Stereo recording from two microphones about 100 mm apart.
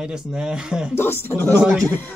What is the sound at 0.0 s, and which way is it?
Speech, 5° right (ahead or behind).